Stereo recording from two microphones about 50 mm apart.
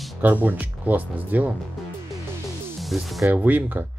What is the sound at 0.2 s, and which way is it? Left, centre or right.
Speech, right.